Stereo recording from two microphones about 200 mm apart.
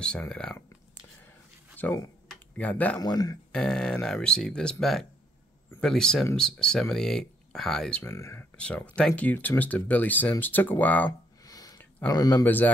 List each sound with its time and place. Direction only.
0.0 s speech: 5° left (ahead or behind)
1.8 s speech: 10° left (ahead or behind)
3.0 s speech: 20° left (ahead or behind)
3.5 s speech: 5° left (ahead or behind)
11.1 s a sound: 20° left (ahead or behind)
12.1 s speech: 20° left (ahead or behind)